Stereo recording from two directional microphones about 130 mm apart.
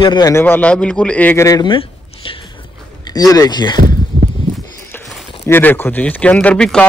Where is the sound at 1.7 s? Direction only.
40° left (ahead or behind).